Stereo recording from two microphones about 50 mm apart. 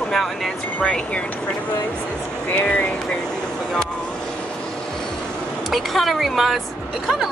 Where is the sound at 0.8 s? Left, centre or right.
Centre.